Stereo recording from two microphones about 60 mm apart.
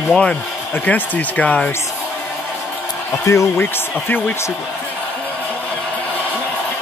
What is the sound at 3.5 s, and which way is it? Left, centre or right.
Speech, left.